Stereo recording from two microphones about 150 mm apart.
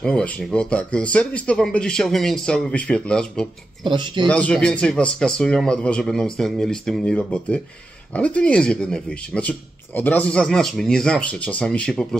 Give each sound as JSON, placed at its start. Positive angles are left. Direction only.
{"t": 0.0, "sound": "speech", "side_deg": 5}
{"t": 3.8, "sound": "speech", "side_deg": -30}
{"t": 4.3, "sound": "speech", "side_deg": 10}